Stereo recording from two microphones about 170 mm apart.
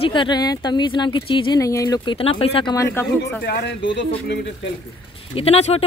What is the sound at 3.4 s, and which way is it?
Speech, 80° left.